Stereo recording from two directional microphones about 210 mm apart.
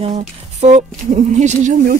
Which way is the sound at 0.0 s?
30° right (ahead or behind).